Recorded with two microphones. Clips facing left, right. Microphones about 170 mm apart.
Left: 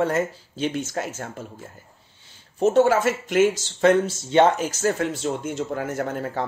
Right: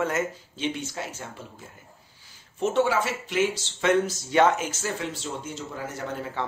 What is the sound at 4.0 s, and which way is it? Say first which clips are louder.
Speech: left 3 dB; 30° left (ahead or behind).